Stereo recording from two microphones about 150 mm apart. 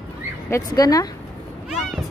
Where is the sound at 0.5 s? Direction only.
25° left (ahead or behind).